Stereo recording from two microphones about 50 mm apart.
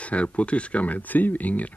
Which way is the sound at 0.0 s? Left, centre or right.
Left.